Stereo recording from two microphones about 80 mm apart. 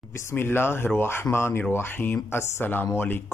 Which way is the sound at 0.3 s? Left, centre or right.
Left.